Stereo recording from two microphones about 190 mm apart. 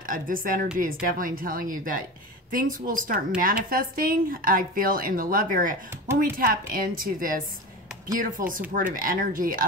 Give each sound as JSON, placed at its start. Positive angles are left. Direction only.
{"t": 0.0, "sound": "a woman's voice", "side_deg": -45}